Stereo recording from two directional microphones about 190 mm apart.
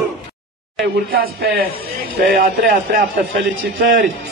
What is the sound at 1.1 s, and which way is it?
Speech, 55° right (ahead or behind).